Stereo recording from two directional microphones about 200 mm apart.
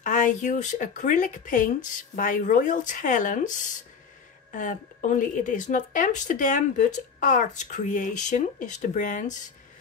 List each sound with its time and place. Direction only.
0.0 s a woman's voice: 40° left (ahead or behind)